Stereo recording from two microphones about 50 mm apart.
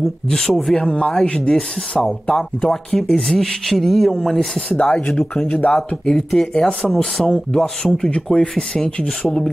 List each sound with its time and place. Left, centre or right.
0.3 s speech: centre
0.7 s speech: centre
2.0 s speech: centre
4.7 s speech: left